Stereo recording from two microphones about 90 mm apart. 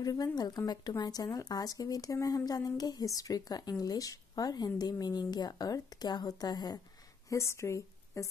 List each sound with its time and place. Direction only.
0.0 s speech: 45° left (ahead or behind)
7.2 s a woman's voice: 35° left (ahead or behind)